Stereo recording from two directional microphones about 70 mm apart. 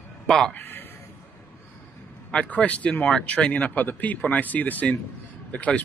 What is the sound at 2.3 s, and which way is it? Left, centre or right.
Speech, centre.